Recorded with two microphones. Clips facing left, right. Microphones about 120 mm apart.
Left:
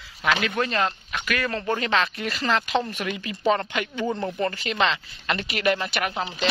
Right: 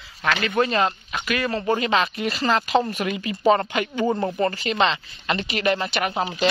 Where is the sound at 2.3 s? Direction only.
35° right (ahead or behind).